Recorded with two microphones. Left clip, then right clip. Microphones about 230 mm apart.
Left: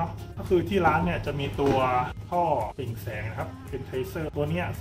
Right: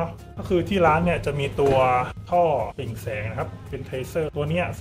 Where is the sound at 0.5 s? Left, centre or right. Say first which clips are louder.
Right 3 dB; right.